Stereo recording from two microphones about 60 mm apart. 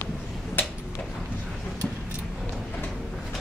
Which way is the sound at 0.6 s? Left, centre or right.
Left.